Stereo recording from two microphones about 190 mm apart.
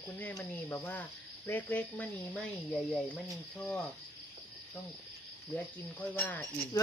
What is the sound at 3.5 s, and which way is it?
Cricket, 5° left (ahead or behind).